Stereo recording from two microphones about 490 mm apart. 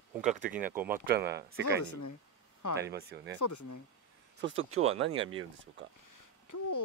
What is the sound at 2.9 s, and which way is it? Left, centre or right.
Speech, centre.